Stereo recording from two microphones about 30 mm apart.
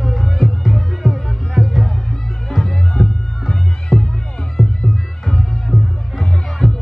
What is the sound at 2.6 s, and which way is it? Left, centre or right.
Music, centre.